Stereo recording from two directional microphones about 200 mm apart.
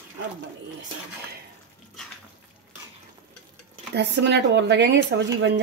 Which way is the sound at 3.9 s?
60° right (ahead or behind).